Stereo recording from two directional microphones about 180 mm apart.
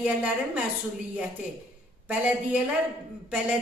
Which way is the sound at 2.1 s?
10° right (ahead or behind).